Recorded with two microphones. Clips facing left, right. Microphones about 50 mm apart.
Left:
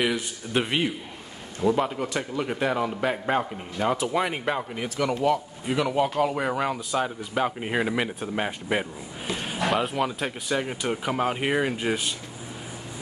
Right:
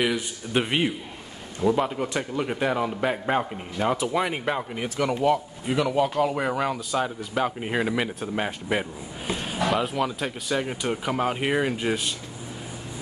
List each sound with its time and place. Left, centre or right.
0.0 s a man's voice: centre
4.9 s speech: centre
5.7 s a man's voice: centre